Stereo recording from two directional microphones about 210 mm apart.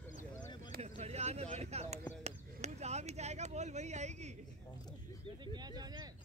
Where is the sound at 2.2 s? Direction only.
30° right (ahead or behind).